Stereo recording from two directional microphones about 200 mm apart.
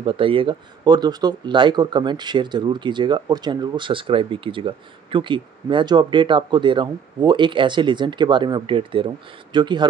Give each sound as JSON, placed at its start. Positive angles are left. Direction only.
{"t": 0.0, "sound": "speech", "side_deg": -25}